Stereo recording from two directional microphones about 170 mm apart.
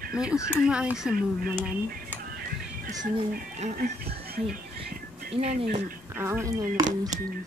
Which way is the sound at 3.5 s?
50° right (ahead or behind).